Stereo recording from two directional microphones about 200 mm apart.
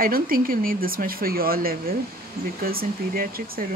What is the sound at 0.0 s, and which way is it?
Speech, 45° right (ahead or behind).